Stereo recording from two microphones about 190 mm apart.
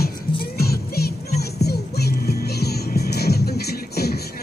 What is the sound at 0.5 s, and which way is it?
Music, 55° left (ahead or behind).